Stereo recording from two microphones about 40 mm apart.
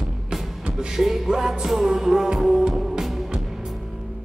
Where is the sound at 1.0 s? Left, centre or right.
Centre.